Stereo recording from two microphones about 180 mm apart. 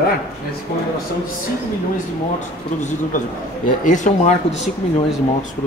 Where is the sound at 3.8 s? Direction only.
45° left (ahead or behind).